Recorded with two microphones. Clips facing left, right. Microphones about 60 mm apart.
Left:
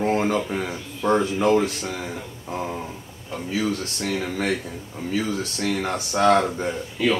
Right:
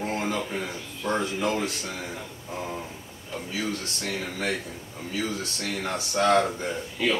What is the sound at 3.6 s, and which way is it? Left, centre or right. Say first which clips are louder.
Speech: left 6 dB; left.